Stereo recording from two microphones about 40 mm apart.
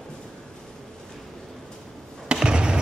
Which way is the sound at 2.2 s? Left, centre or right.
Right.